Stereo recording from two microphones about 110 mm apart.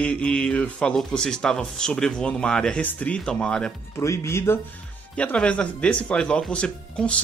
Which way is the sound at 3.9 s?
25° left (ahead or behind).